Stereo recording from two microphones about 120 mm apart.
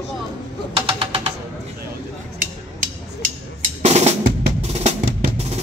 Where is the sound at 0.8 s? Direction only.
45° right (ahead or behind).